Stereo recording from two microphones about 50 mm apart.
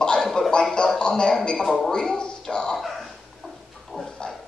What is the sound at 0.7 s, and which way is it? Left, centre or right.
Music, centre.